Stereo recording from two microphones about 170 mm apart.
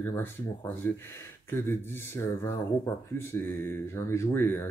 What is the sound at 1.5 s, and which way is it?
Speech, 15° left (ahead or behind).